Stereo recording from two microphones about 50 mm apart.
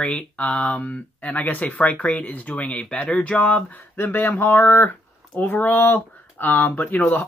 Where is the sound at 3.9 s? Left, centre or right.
Left.